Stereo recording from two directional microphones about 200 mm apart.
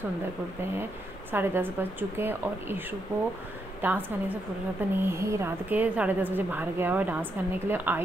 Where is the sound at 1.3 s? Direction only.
10° right (ahead or behind).